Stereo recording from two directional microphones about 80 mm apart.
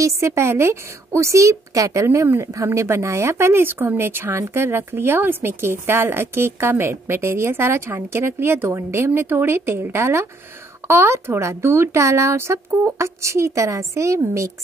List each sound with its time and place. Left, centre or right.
0.0 s speech: right